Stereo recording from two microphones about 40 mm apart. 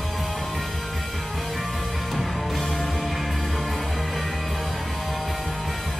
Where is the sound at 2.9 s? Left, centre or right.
Centre.